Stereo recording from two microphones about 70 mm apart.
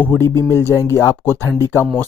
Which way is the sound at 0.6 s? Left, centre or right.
Left.